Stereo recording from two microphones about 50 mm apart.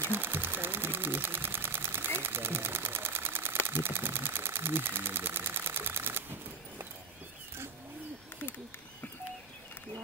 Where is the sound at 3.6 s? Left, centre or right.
Right.